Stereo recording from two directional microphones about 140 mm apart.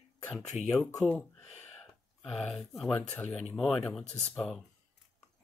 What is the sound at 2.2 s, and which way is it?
Speech, 5° left (ahead or behind).